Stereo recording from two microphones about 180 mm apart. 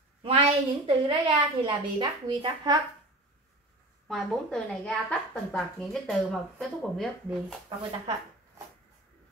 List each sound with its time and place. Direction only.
0.2 s a woman's voice: 30° right (ahead or behind)
4.1 s a woman's voice: centre (ahead or behind)